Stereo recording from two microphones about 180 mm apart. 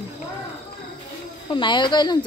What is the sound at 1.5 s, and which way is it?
Speech, 25° left (ahead or behind).